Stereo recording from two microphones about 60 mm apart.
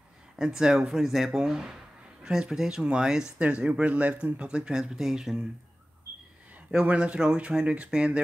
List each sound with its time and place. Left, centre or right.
0.4 s speech: centre
3.3 s speech: centre
6.7 s speech: centre